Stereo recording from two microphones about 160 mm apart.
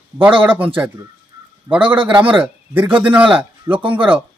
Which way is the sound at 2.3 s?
10° right (ahead or behind).